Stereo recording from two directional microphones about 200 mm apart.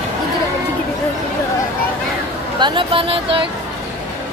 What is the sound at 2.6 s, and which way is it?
Speech, 25° right (ahead or behind).